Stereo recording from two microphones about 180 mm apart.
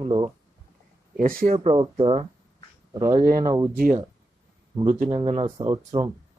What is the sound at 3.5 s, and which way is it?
Speech, 20° right (ahead or behind).